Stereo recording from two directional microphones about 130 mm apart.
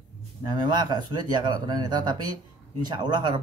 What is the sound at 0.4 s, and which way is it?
Speech, 35° right (ahead or behind).